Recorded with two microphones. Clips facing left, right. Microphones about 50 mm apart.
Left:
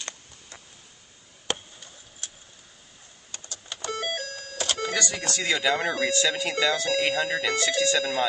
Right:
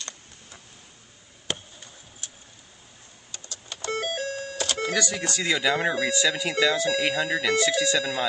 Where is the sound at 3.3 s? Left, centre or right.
Left.